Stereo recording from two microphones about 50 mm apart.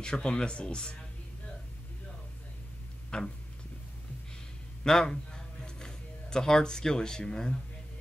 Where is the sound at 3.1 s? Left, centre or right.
Centre.